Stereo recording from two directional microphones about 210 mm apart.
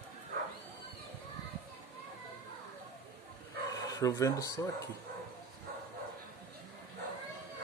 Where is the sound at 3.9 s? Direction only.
15° left (ahead or behind).